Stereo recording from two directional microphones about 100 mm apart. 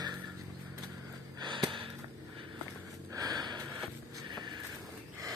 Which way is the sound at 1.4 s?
50° right (ahead or behind).